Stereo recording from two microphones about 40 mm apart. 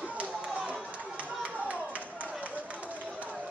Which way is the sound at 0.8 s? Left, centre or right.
Right.